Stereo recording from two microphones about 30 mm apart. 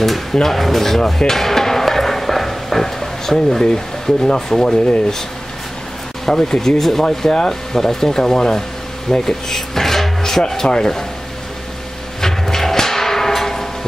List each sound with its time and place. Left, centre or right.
0.3 s a sound: centre
3.6 s speech: left
6.3 s speech: centre
9.2 s drawer open or close: centre
10.6 s speech: left
12.2 s music: centre